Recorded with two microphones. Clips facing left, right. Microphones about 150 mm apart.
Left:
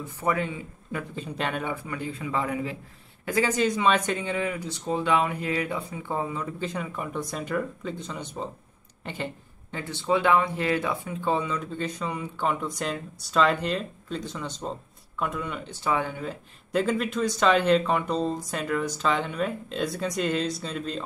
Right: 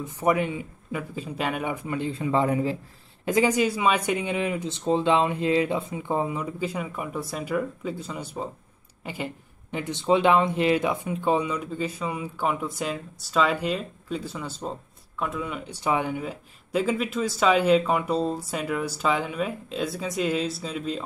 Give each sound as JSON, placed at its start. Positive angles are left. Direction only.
{"t": 0.0, "sound": "speech", "side_deg": -15}
{"t": 1.1, "sound": "a man's voice", "side_deg": -5}
{"t": 3.3, "sound": "speech", "side_deg": -15}